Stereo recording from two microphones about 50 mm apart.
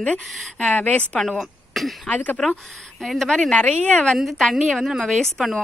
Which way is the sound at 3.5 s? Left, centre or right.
Left.